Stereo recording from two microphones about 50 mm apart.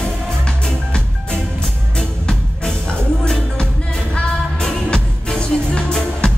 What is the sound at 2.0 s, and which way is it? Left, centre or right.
Music, centre.